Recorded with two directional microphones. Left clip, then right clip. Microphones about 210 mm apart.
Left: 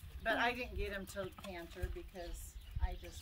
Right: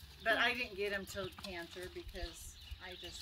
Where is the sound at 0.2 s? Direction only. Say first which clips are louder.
Right 2 dB; 50° left (ahead or behind).